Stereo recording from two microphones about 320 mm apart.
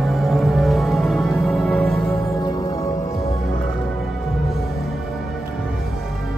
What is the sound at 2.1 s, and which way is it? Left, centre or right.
Music, centre.